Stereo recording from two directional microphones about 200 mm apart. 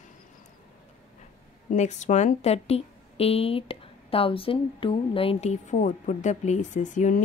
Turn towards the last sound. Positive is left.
turn(degrees=40)  # may be behind; listen again after turning